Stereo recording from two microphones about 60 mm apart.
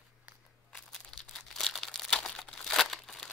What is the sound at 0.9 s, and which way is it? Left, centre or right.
Crumpling, centre.